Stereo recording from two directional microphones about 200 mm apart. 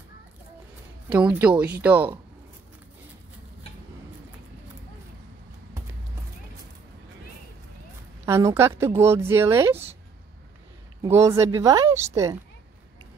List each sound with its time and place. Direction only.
1.0 s speech: 5° right (ahead or behind)
8.3 s speech: 15° right (ahead or behind)
11.0 s speech: 15° right (ahead or behind)